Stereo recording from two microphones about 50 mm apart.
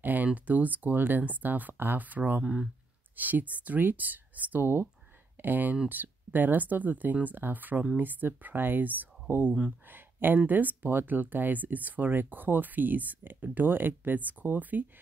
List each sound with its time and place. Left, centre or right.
0.0 s speech: right
2.4 s speech: centre
3.2 s speech: right